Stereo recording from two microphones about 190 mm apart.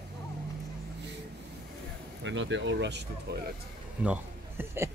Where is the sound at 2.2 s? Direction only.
75° right (ahead or behind).